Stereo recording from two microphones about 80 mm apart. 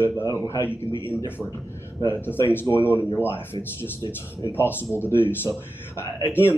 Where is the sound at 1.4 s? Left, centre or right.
Centre.